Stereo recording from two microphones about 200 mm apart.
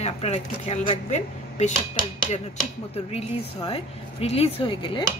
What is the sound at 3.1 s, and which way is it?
Speech, 30° left (ahead or behind).